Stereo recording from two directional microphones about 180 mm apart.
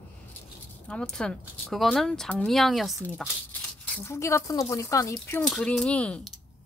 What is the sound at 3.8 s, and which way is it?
Speech, 15° left (ahead or behind).